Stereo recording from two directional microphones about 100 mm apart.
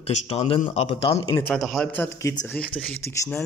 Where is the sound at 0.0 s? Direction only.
90° left.